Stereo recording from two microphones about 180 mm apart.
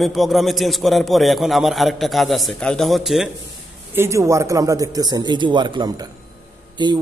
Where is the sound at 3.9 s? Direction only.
15° right (ahead or behind).